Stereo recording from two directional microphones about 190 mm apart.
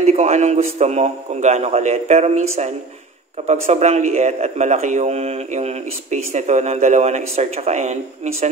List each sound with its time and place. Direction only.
0.0 s a man's voice: 35° right (ahead or behind)
3.4 s a man's voice: 35° right (ahead or behind)